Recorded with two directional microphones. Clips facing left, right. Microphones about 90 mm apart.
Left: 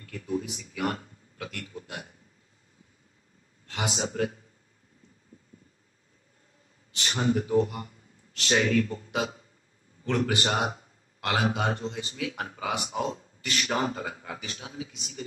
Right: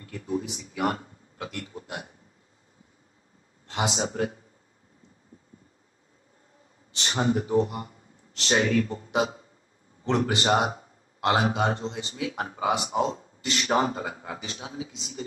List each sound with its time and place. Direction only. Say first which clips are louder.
0.0 s a man's voice: right 1 dB; 30° right (ahead or behind)
3.6 s a man's voice: right 3 dB; 25° right (ahead or behind)
7.0 s a man's voice: right 1 dB; 30° right (ahead or behind)